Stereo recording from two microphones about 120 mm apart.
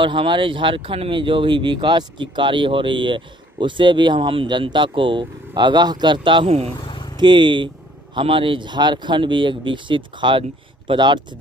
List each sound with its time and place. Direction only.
0.0 s speech: 45° right (ahead or behind)